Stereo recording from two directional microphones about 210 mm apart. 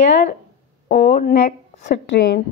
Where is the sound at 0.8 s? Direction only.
45° left (ahead or behind).